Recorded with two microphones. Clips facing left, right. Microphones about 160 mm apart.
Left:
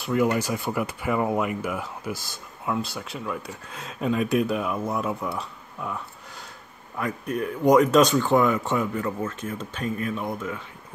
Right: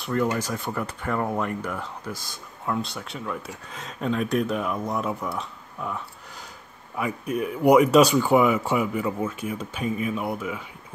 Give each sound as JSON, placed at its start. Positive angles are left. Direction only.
{"t": 0.0, "sound": "speech", "side_deg": 5}